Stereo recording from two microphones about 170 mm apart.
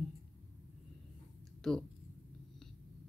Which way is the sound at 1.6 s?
5° left (ahead or behind).